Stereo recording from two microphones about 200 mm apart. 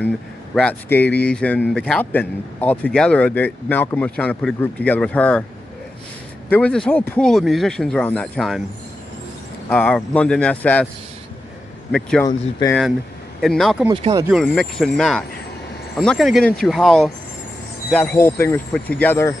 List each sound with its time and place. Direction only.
0.6 s a man's voice: 5° left (ahead or behind)
6.5 s speech: 5° left (ahead or behind)
9.7 s a man's voice: 5° left (ahead or behind)
11.9 s speech: 5° left (ahead or behind)
12.3 s speech: 20° left (ahead or behind)
13.4 s speech: centre (ahead or behind)
13.8 s speech: 20° right (ahead or behind)
14.3 s a man's voice: 5° left (ahead or behind)